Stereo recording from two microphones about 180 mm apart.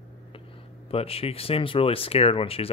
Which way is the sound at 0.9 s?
35° left (ahead or behind).